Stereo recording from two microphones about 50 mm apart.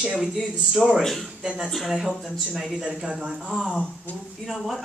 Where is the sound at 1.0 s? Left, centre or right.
Centre.